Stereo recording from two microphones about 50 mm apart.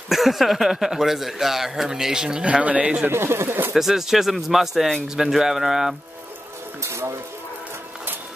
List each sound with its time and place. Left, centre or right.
0.1 s a man's voice: centre
2.6 s a man's voice: right
3.1 s speech: right
3.7 s a man's voice: centre
6.8 s music: right